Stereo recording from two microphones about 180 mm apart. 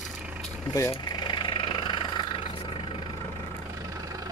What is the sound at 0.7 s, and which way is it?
Vehicle, 20° left (ahead or behind).